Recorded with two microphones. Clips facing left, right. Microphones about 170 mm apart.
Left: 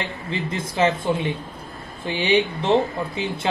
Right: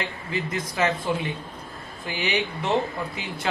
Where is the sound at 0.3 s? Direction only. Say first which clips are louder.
Left 1 dB; 25° left (ahead or behind).